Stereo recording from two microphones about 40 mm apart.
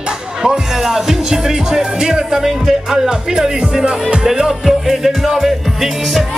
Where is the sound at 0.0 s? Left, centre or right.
Right.